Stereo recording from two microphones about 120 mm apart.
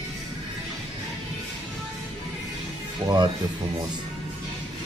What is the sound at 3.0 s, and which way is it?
Speech, 35° right (ahead or behind).